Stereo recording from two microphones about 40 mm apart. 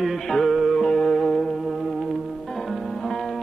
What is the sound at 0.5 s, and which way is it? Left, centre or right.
Music, centre.